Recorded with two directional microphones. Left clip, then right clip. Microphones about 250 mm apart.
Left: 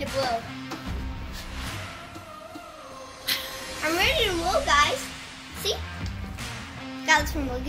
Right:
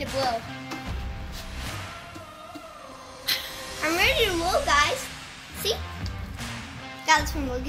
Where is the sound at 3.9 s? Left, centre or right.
Right.